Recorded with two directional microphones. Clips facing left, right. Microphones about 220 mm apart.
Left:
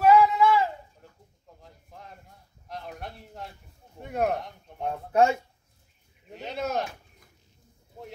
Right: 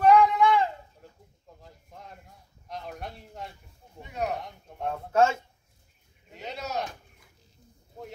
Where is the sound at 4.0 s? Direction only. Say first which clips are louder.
Left 5 dB; 55° left (ahead or behind).